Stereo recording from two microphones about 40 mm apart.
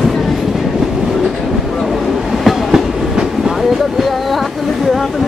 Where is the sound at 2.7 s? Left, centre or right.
Centre.